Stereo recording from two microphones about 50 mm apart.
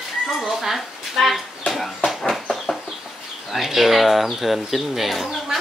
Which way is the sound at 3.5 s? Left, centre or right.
Centre.